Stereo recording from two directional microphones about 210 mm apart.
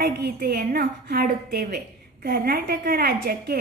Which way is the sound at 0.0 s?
50° right (ahead or behind).